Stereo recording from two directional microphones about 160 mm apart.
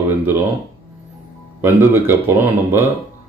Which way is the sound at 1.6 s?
15° right (ahead or behind).